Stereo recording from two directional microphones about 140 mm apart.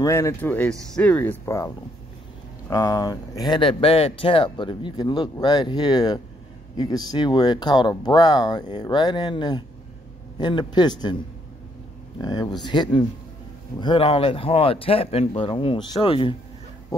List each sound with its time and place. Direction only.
0.0 s speech: 20° left (ahead or behind)
2.7 s speech: 25° left (ahead or behind)